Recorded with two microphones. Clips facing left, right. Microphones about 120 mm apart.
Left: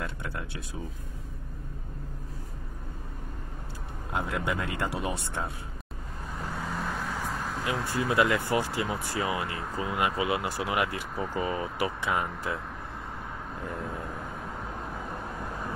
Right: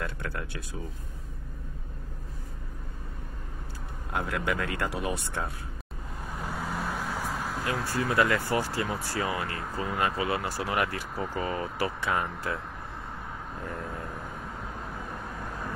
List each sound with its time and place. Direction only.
0.0 s a sound: 20° left (ahead or behind)
4.1 s speech: 20° left (ahead or behind)
6.3 s vehicle: 10° right (ahead or behind)
7.8 s speech: 15° left (ahead or behind)
13.6 s speech: 5° left (ahead or behind)